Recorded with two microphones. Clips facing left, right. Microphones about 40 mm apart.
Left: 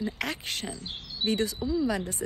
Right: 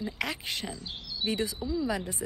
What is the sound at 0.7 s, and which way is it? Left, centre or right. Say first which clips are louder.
Speech: even; left.